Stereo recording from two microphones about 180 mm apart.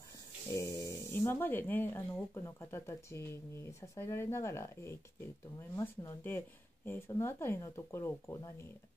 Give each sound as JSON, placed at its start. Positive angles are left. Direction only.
{"t": 0.5, "sound": "speech", "side_deg": 15}